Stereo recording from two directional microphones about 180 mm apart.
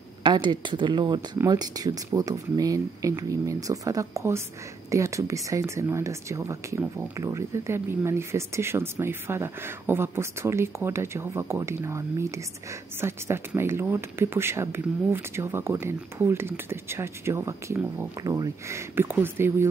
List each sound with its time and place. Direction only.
0.2 s speech: 25° right (ahead or behind)